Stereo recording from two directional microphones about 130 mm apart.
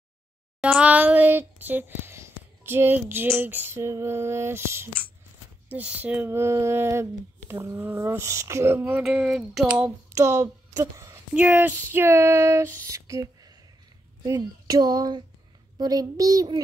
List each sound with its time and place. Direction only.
0.6 s child singing: 10° right (ahead or behind)
5.7 s speech: 10° right (ahead or behind)
9.0 s a sound: 5° right (ahead or behind)
9.8 s speech: 25° right (ahead or behind)
11.3 s speech: 15° right (ahead or behind); by 16.6 s 30° right (ahead or behind)